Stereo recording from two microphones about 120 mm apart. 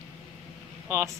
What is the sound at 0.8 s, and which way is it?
Speech, 20° right (ahead or behind).